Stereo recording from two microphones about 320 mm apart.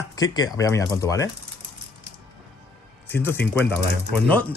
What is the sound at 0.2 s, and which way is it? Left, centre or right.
Speech, centre.